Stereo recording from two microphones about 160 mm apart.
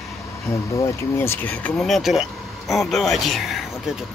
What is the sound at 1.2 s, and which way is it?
Speech, 15° left (ahead or behind).